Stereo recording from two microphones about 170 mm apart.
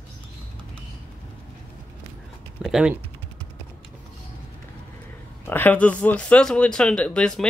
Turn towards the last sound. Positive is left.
turn(degrees=5)  # may be behind; listen again after turning